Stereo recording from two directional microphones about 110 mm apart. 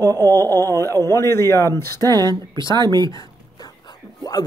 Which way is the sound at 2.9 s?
40° right (ahead or behind).